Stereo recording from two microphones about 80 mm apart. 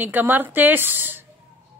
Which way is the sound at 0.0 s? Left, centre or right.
Right.